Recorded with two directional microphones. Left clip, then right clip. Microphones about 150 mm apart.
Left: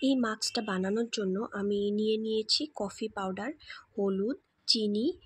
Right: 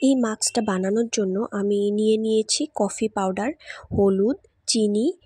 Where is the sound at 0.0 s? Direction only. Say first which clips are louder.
Right 8 dB; 50° right (ahead or behind).